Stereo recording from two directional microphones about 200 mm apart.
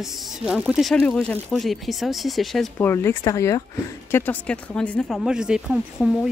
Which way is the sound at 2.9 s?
10° left (ahead or behind).